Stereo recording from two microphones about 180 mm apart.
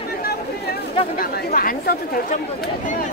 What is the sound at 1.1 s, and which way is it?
Speech, 55° left (ahead or behind).